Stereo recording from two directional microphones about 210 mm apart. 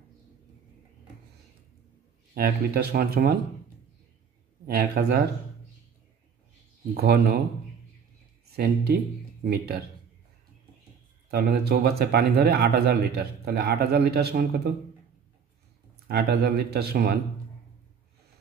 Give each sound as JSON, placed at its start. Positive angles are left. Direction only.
{"t": 2.3, "sound": "speech", "side_deg": -50}
{"t": 4.6, "sound": "speech", "side_deg": -45}
{"t": 6.9, "sound": "speech", "side_deg": -45}
{"t": 8.5, "sound": "speech", "side_deg": -50}
{"t": 11.2, "sound": "speech", "side_deg": -50}
{"t": 16.1, "sound": "speech", "side_deg": -50}